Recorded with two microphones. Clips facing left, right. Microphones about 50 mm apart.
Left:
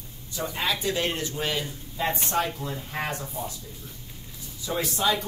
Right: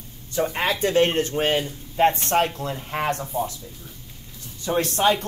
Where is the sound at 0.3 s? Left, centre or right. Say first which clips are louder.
Right 5 dB; right.